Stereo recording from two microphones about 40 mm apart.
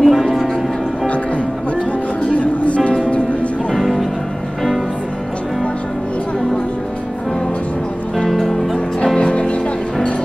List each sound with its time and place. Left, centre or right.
0.0 s music: centre
2.3 s music: left
3.7 s music: centre
8.2 s music: centre
8.7 s music: centre